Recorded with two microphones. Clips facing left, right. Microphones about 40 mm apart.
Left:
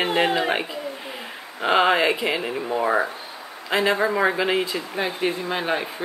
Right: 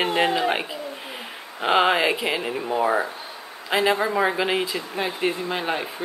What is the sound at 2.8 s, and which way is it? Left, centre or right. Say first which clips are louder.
Speech: left 1 dB; centre.